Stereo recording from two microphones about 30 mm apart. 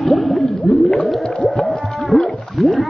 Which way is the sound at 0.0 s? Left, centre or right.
Centre.